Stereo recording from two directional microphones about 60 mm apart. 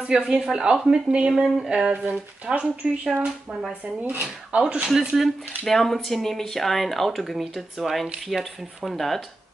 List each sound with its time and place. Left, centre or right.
0.0 s speech: centre
2.0 s speech: right
4.2 s speech: centre
4.8 s speech: centre